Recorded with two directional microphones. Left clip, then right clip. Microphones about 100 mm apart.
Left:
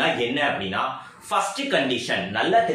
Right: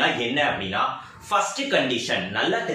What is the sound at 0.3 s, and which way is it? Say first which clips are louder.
Speech: even; 20° left (ahead or behind).